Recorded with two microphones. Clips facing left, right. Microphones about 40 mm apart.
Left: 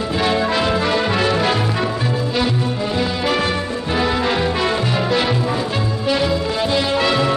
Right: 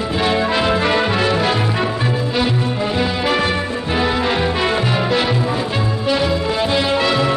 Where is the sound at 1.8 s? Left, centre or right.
Centre.